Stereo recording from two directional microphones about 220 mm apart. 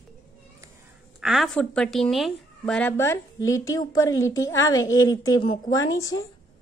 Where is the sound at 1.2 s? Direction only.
Centre (ahead or behind); by 5.9 s 20° left (ahead or behind).